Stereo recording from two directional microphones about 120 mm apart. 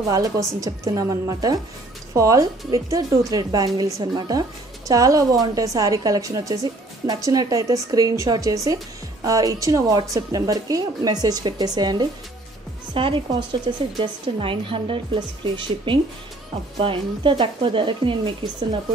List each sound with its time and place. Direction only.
0.1 s a woman's voice: 30° right (ahead or behind)